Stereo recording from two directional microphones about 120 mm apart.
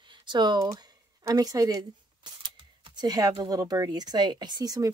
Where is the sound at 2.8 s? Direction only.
35° right (ahead or behind).